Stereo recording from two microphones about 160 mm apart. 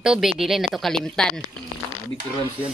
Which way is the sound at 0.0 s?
5° right (ahead or behind).